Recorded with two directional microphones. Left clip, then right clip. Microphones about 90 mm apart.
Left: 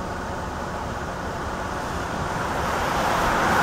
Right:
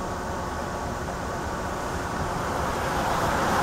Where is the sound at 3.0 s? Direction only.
30° left (ahead or behind).